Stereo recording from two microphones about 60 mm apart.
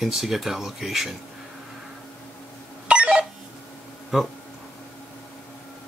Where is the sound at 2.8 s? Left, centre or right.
Centre.